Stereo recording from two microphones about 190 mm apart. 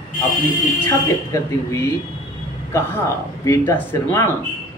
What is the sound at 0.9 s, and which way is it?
Speech, 15° left (ahead or behind).